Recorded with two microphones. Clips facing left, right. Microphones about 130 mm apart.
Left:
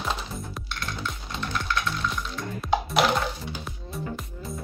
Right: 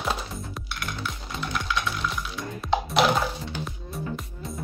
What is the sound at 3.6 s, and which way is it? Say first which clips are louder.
Music: right 1 dB; centre (ahead or behind).